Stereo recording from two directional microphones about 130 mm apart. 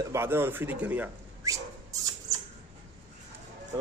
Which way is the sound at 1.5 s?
25° right (ahead or behind).